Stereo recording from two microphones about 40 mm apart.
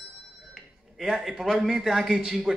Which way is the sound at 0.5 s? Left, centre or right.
Centre.